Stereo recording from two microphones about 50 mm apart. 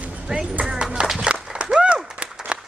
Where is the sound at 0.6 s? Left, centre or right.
Centre.